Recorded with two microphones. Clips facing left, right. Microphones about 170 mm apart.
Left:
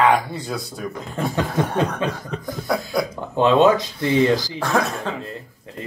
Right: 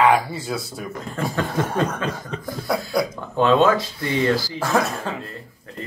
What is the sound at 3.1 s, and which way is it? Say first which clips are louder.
Speech: left 2 dB; 20° left (ahead or behind).